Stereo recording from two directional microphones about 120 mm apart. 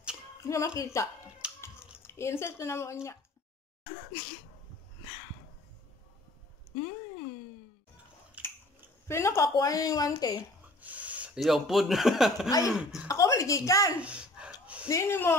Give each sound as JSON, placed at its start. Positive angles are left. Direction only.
{"t": 0.5, "sound": "speech", "side_deg": 25}
{"t": 1.4, "sound": "a sound", "side_deg": -10}
{"t": 2.0, "sound": "speech", "side_deg": 20}
{"t": 8.4, "sound": "biting", "side_deg": -10}
{"t": 9.0, "sound": "speech", "side_deg": 20}
{"t": 10.8, "sound": "a sound", "side_deg": -10}
{"t": 11.3, "sound": "speech", "side_deg": 0}
{"t": 13.1, "sound": "speech", "side_deg": 25}
{"t": 14.0, "sound": "a sound", "side_deg": -10}
{"t": 14.9, "sound": "speech", "side_deg": 25}